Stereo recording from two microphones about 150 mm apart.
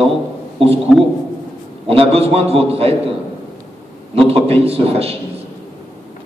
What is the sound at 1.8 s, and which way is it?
A man's voice, 40° right (ahead or behind).